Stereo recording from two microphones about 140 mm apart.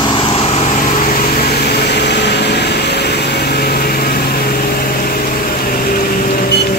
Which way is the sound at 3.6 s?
90° left.